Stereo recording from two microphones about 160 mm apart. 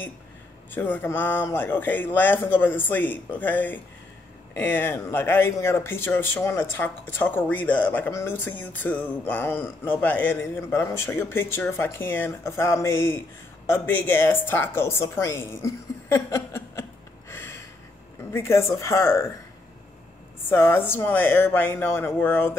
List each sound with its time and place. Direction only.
0.7 s speech: 10° left (ahead or behind)
17.3 s a sound: 15° left (ahead or behind)
18.3 s speech: 15° left (ahead or behind)
20.4 s speech: 15° left (ahead or behind)